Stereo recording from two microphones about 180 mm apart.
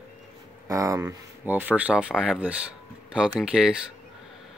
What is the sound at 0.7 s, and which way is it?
Speech, 15° right (ahead or behind).